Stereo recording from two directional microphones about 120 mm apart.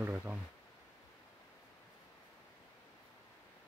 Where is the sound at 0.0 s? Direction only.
15° right (ahead or behind).